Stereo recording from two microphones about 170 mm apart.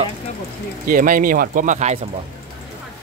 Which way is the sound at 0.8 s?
55° right (ahead or behind).